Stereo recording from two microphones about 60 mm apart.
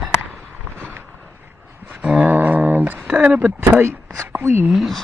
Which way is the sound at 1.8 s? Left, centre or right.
Right.